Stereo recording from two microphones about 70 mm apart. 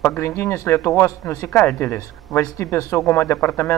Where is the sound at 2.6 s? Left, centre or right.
Left.